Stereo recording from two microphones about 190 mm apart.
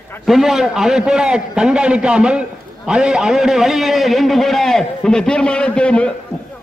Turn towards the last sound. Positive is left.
turn(degrees=5)  # may be behind; listen again after turning